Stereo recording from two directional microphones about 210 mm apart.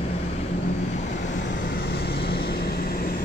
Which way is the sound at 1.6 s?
45° left (ahead or behind).